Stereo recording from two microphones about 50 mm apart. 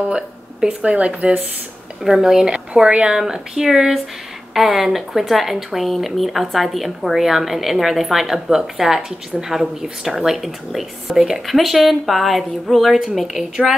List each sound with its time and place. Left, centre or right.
0.1 s speech: centre
2.0 s speech: centre
3.2 s a woman's voice: centre